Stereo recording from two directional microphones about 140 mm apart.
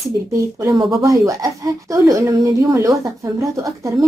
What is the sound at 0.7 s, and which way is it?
Speech, 25° right (ahead or behind).